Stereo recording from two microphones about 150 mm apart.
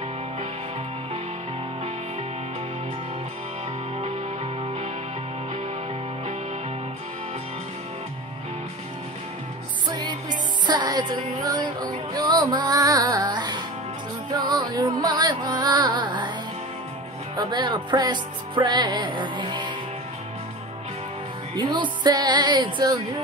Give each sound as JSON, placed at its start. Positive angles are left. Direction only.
{"t": 9.8, "sound": "music", "side_deg": -30}
{"t": 17.4, "sound": "music", "side_deg": -30}
{"t": 21.5, "sound": "speech", "side_deg": -30}